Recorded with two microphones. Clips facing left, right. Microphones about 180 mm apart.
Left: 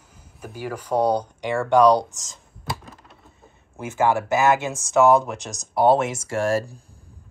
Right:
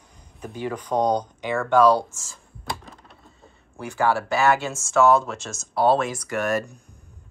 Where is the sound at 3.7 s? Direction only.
20° left (ahead or behind).